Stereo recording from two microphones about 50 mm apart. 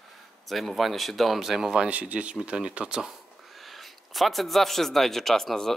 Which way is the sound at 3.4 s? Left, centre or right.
Centre.